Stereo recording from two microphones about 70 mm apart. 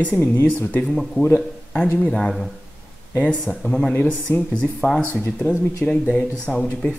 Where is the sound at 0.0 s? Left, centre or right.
Left.